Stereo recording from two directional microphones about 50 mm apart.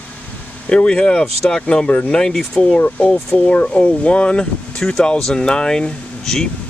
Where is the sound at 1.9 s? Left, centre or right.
Left.